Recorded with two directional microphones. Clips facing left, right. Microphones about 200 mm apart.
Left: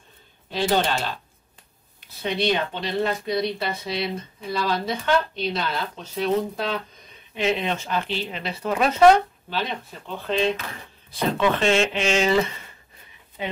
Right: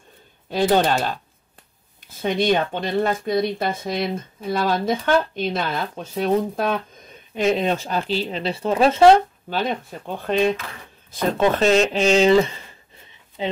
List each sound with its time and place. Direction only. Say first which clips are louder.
0.5 s speech: right 4 dB; 50° right (ahead or behind); by 9.2 s 30° right (ahead or behind)
9.5 s speech: right 6 dB; 45° right (ahead or behind); by 13.5 s 30° right (ahead or behind)